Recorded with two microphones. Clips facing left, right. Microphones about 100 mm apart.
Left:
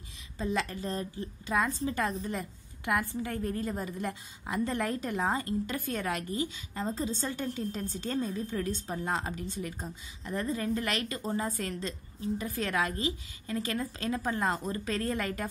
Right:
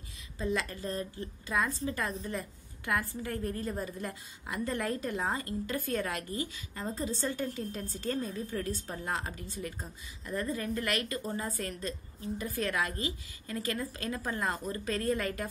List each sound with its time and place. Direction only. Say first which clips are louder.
0.4 s a woman's voice: left 1 dB; 25° left (ahead or behind)